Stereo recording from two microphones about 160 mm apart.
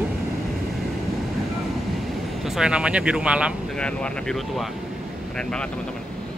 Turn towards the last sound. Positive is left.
turn(degrees=5)  # may be behind; listen again after turning